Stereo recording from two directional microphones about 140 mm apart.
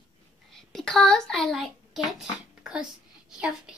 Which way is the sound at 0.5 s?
5° left (ahead or behind).